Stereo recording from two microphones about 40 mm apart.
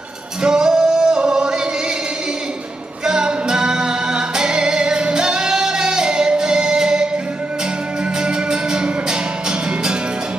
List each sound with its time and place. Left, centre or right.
0.4 s music: centre
3.1 s music: centre
8.2 s music: right